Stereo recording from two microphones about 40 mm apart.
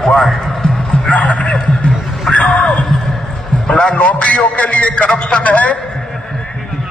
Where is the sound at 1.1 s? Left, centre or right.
Left.